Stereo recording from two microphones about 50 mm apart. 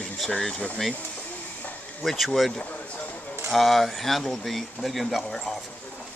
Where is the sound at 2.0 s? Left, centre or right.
Centre.